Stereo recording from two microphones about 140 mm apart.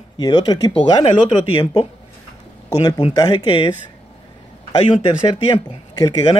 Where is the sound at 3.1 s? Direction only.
25° left (ahead or behind).